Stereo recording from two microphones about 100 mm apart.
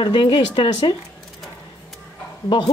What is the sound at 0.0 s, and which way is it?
Speech, 55° left (ahead or behind).